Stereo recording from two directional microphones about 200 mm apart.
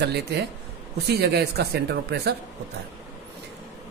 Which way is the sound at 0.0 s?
55° right (ahead or behind).